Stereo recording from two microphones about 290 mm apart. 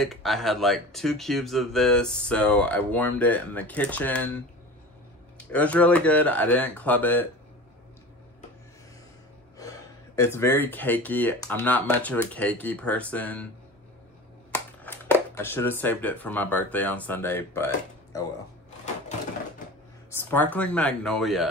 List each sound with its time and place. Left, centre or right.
0.0 s speech: centre
5.4 s speech: centre
9.6 s speech: centre
14.5 s a sound: centre
15.3 s speech: centre
20.1 s speech: centre